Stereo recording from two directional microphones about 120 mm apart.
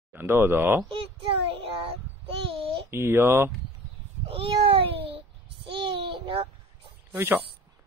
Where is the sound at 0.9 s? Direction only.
50° right (ahead or behind).